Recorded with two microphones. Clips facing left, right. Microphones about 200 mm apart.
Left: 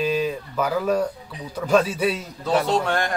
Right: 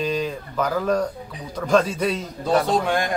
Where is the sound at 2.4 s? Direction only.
15° right (ahead or behind).